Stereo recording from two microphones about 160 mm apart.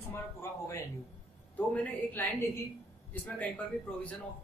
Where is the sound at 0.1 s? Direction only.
20° left (ahead or behind).